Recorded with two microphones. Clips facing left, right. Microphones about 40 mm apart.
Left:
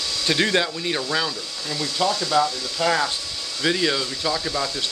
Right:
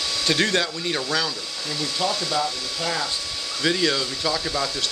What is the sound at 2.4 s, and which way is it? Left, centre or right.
Speech, left.